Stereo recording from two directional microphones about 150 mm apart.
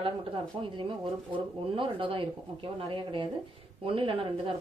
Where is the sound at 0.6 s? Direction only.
35° right (ahead or behind).